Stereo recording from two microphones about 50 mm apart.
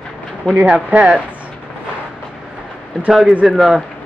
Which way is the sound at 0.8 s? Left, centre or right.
Right.